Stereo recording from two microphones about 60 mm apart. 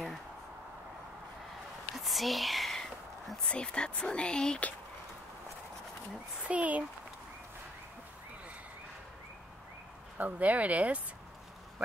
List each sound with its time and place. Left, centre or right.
2.0 s whispering: centre
3.4 s speech: centre
6.4 s speech: right
10.1 s speech: right